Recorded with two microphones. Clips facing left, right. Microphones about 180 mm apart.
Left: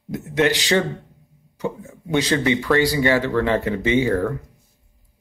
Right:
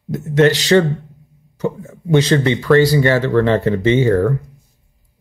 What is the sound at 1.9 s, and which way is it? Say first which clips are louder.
Speech: right 6 dB; 15° left (ahead or behind).